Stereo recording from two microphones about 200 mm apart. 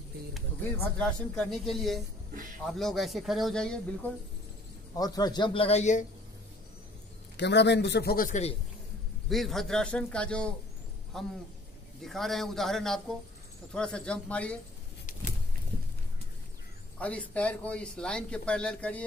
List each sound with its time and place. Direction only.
0.9 s speech: 5° left (ahead or behind)
4.9 s a man's voice: 20° left (ahead or behind); by 6.0 s 35° left (ahead or behind)
7.3 s a man's voice: 60° left (ahead or behind); by 8.5 s 35° left (ahead or behind)
9.3 s speech: centre (ahead or behind)
17.0 s speech: 5° left (ahead or behind)